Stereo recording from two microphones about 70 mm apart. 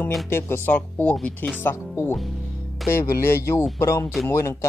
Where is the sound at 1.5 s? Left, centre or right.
Left.